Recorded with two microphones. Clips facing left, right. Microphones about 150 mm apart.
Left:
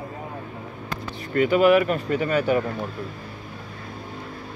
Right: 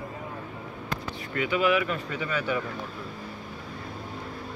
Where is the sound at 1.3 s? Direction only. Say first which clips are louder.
Left 8 dB; 45° left (ahead or behind).